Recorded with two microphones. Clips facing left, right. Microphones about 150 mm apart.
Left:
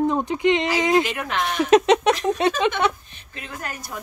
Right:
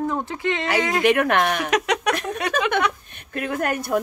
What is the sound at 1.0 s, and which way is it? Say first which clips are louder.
Speech: right 8 dB; 60° right (ahead or behind).